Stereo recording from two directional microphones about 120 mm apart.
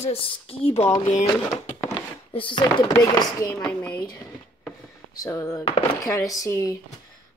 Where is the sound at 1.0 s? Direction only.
80° left.